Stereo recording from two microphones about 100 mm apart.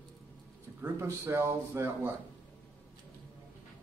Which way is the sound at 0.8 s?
25° right (ahead or behind).